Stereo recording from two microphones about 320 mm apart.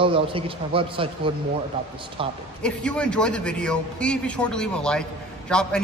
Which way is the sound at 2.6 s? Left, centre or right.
Centre.